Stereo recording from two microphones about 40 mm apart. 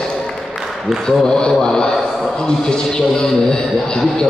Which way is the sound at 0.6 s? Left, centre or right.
Centre.